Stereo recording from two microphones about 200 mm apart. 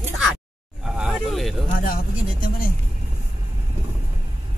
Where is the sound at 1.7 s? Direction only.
45° left (ahead or behind).